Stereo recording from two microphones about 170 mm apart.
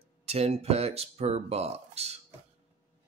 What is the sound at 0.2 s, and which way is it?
Speech, 35° right (ahead or behind).